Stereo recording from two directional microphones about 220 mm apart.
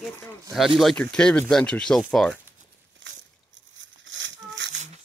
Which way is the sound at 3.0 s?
55° right (ahead or behind).